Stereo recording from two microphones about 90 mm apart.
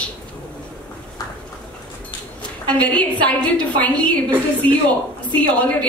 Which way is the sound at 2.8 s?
15° left (ahead or behind).